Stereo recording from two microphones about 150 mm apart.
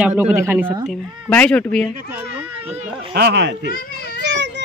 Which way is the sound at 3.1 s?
90° right.